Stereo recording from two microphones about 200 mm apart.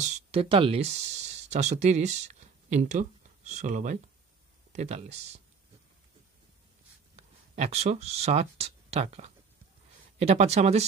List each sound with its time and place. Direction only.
0.3 s speech: 25° right (ahead or behind)
7.2 s speech: 35° right (ahead or behind)